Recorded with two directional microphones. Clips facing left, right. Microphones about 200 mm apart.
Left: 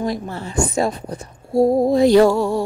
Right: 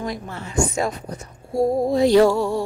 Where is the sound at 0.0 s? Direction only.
35° left (ahead or behind).